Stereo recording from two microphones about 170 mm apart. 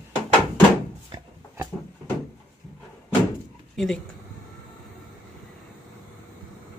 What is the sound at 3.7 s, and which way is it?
Speech, centre (ahead or behind).